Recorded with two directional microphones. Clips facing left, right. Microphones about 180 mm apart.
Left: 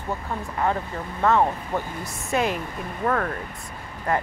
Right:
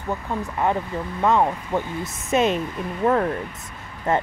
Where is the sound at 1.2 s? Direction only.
15° right (ahead or behind).